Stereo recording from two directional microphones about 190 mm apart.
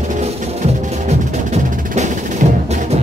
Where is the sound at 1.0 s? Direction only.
35° right (ahead or behind).